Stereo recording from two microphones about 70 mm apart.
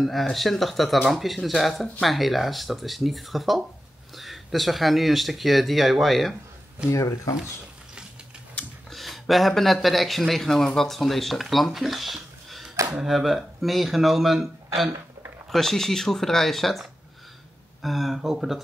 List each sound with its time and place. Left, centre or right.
0.0 s speech: centre
6.9 s speech: left
8.9 s speech: centre
17.8 s speech: centre